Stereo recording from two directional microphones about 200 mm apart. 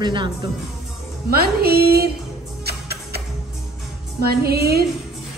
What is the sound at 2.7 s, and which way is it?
Music, 55° right (ahead or behind).